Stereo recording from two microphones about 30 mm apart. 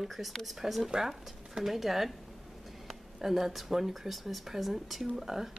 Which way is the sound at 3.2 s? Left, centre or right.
Centre.